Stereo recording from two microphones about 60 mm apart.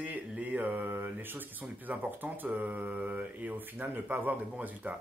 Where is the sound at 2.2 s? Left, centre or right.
Right.